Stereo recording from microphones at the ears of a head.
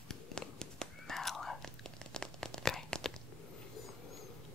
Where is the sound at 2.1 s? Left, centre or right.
Centre.